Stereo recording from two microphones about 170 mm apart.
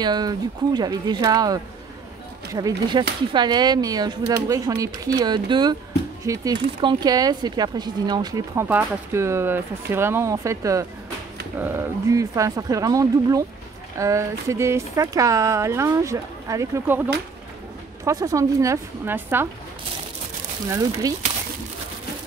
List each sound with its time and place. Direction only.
0.0 s speech: 25° right (ahead or behind)
20.7 s speech: 20° right (ahead or behind)